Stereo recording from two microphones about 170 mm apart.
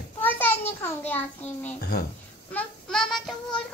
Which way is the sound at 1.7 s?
75° left (ahead or behind).